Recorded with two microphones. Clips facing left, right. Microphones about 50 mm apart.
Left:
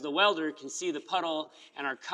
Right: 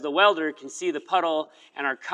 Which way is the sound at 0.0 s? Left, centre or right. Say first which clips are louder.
Right 7 dB; right.